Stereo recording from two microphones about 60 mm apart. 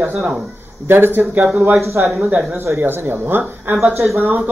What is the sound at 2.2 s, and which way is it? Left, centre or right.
Speech, centre.